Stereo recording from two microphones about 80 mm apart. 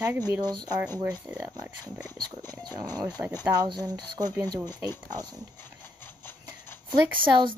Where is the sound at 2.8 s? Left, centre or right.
Right.